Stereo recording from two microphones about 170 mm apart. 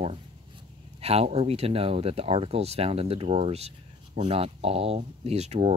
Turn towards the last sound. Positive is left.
turn(degrees=-40)  # may be behind; listen again after turning